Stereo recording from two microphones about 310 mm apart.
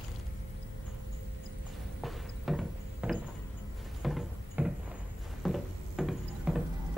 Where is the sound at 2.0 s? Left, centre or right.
Centre.